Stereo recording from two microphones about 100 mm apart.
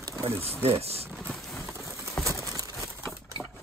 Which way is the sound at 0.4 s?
80° right.